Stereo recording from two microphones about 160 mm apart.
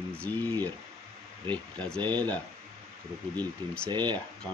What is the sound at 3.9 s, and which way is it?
Speech, 30° right (ahead or behind).